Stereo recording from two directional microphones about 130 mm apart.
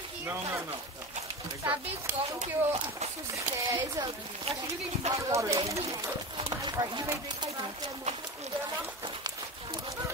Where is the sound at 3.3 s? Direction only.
25° right (ahead or behind).